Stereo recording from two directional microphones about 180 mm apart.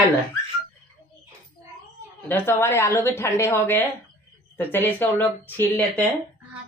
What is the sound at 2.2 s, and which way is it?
Speech, 10° left (ahead or behind).